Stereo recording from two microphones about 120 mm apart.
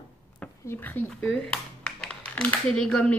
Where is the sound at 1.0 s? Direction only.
5° left (ahead or behind).